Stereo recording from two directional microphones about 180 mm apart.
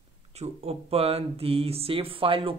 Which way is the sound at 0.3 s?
35° right (ahead or behind).